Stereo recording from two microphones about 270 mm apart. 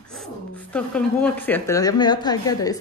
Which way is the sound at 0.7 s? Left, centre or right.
Centre.